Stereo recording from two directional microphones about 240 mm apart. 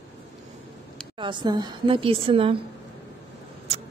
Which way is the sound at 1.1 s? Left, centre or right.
Centre.